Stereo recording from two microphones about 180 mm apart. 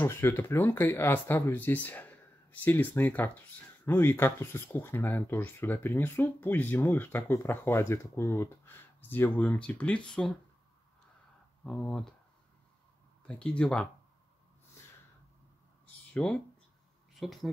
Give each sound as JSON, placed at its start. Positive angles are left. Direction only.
{"t": 0.0, "sound": "speech", "side_deg": 15}
{"t": 11.6, "sound": "speech", "side_deg": 5}
{"t": 13.3, "sound": "speech", "side_deg": 5}
{"t": 16.1, "sound": "speech", "side_deg": 5}